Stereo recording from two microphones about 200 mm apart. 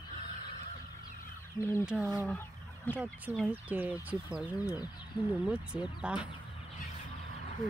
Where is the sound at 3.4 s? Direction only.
10° right (ahead or behind).